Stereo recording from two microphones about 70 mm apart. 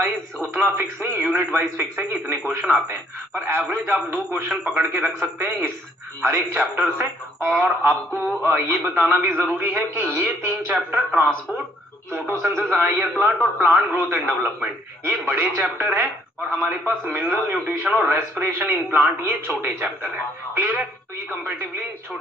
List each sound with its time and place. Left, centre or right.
0.5 s a man's voice: right
2.7 s a man's voice: right